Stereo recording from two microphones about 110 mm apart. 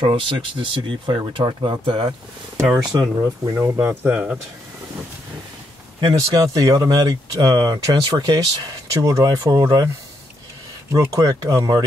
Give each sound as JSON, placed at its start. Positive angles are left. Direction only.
{"t": 0.0, "sound": "speech", "side_deg": -50}
{"t": 3.2, "sound": "speech", "side_deg": -25}
{"t": 6.1, "sound": "speech", "side_deg": -30}
{"t": 10.9, "sound": "speech", "side_deg": -30}